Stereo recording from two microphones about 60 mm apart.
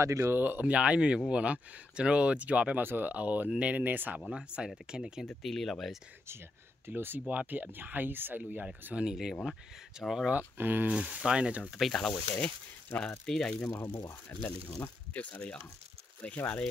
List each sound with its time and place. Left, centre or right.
0.2 s speech: right
2.8 s speech: right
4.3 s speech: centre
5.3 s speech: centre
6.9 s speech: right
9.1 s speech: centre
10.3 s speech: right
10.9 s speech: centre
12.1 s speech: left
13.2 s speech: centre
13.7 s speech: left
14.8 s speech: left